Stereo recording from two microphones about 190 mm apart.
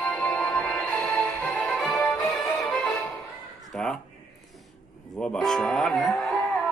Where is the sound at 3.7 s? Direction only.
Centre (ahead or behind).